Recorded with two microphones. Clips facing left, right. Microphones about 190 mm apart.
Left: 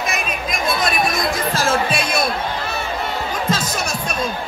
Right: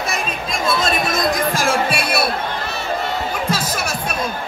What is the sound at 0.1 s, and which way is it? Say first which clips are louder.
Chatter: even; 25° right (ahead or behind).